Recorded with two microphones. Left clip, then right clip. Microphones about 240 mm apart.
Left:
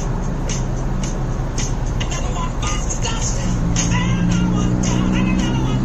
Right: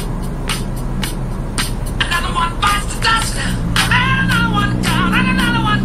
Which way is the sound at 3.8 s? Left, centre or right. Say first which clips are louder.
Right 11 dB; right.